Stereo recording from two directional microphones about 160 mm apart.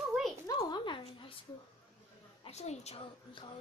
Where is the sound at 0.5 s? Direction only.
25° left (ahead or behind).